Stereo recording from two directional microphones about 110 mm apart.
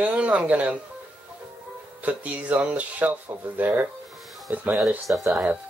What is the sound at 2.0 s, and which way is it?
Speech, 15° right (ahead or behind).